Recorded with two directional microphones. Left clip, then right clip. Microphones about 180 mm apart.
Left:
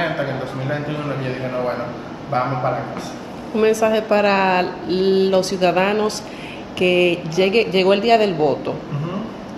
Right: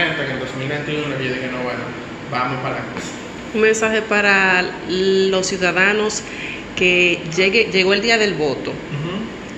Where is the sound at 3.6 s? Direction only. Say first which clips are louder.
Right 1 dB; 40° left (ahead or behind).